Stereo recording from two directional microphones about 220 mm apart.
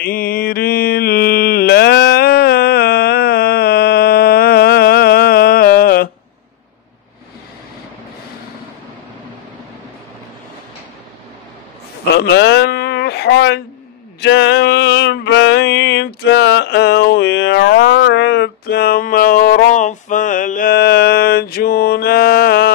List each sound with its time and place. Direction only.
0.0 s mantra: 40° left (ahead or behind)
12.2 s a sound: 50° left (ahead or behind)
14.2 s music: 50° left (ahead or behind)